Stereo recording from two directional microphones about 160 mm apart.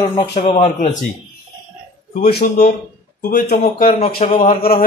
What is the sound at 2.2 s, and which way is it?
Speech, 70° left (ahead or behind).